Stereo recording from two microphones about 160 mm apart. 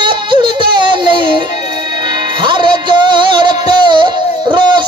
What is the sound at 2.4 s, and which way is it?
Music, 30° right (ahead or behind).